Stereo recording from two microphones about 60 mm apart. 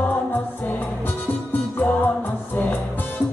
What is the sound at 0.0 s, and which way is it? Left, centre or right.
Music, left.